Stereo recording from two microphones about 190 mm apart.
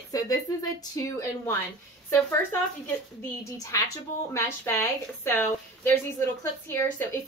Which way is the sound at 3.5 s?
15° left (ahead or behind).